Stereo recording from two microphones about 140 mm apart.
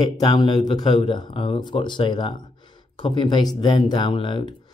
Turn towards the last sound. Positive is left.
turn(degrees=35)  # may be behind; listen again after turning